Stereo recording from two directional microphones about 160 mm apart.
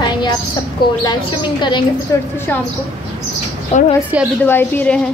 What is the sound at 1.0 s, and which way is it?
Speech, 25° left (ahead or behind).